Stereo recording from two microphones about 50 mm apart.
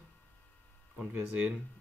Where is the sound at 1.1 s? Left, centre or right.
Right.